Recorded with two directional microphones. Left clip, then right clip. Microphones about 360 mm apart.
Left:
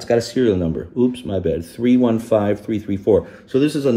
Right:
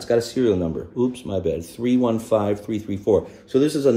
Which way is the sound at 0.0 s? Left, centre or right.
Left.